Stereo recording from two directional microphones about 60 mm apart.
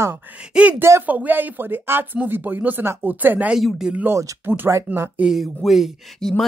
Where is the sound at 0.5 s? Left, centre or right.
Centre.